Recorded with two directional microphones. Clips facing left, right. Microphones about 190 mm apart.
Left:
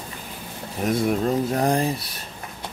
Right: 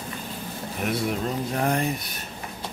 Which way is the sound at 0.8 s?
35° left (ahead or behind).